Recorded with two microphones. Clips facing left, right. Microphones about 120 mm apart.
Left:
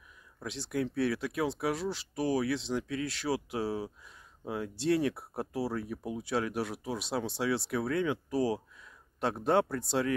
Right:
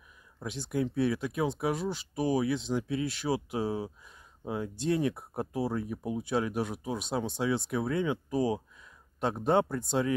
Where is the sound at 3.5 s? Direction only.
20° right (ahead or behind).